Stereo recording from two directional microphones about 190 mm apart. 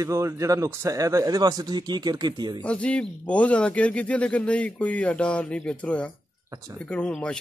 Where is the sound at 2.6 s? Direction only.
5° left (ahead or behind).